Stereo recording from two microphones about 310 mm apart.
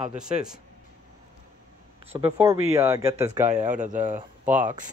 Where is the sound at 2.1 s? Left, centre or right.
Centre.